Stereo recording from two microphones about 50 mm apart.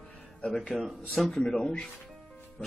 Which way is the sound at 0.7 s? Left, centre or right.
Centre.